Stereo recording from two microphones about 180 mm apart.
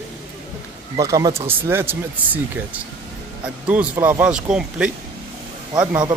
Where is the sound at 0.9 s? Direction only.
20° right (ahead or behind).